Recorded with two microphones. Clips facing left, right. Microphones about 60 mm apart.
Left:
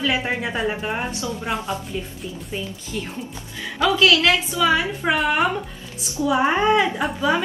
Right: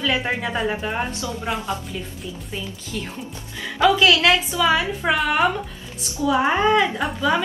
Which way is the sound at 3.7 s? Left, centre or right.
Right.